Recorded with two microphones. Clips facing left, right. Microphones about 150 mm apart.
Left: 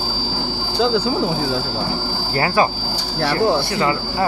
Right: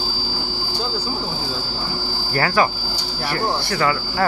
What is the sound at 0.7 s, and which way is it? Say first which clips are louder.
Speech: left 10 dB; 75° left (ahead or behind).